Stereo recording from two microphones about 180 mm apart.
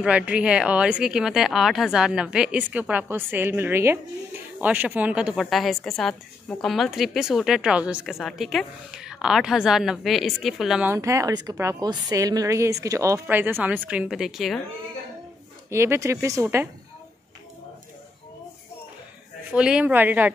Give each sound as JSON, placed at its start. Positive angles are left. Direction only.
{"t": 0.0, "sound": "a woman's voice", "side_deg": -5}
{"t": 11.0, "sound": "speech", "side_deg": -20}
{"t": 15.7, "sound": "speech", "side_deg": -15}
{"t": 19.5, "sound": "speech", "side_deg": -5}